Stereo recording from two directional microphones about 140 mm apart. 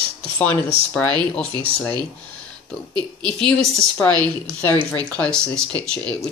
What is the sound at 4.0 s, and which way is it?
Speech, 10° left (ahead or behind).